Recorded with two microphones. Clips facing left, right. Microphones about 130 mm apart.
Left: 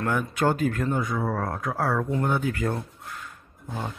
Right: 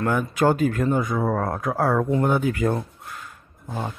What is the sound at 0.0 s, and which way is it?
Speech, 5° right (ahead or behind).